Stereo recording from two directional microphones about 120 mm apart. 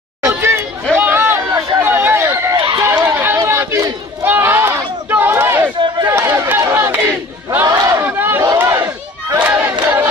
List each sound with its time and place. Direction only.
0.2 s chatter: 20° right (ahead or behind)
0.9 s a sound: 20° right (ahead or behind)
2.5 s run: 40° right (ahead or behind)
2.8 s run: 20° right (ahead or behind)
4.2 s crowd: 20° right (ahead or behind)
6.0 s run: 20° right (ahead or behind)
7.6 s a sound: 30° right (ahead or behind)
8.0 s battle cry: 15° right (ahead or behind)